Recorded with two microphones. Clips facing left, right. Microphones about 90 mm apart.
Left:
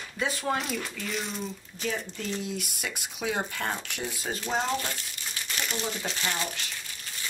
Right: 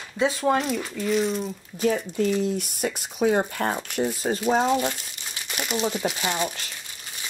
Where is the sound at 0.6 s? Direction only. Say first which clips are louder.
Right 7 dB; centre (ahead or behind).